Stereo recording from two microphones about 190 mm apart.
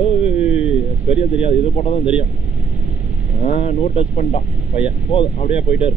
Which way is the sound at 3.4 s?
35° left (ahead or behind).